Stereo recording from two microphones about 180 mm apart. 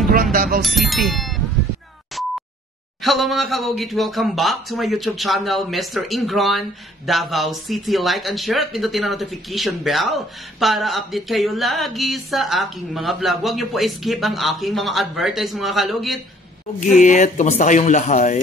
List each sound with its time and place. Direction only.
0.1 s speech: 50° right (ahead or behind)
0.6 s speech: centre (ahead or behind)
3.0 s speech: centre (ahead or behind)
16.9 s speech: 40° left (ahead or behind)